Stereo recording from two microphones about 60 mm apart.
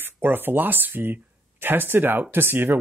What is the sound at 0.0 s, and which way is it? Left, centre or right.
Speech, right.